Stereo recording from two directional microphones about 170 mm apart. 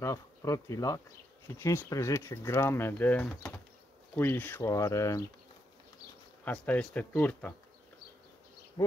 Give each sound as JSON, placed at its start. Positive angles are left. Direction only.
{"t": 0.0, "sound": "speech", "side_deg": 15}
{"t": 6.4, "sound": "speech", "side_deg": 10}
{"t": 8.8, "sound": "bee", "side_deg": 25}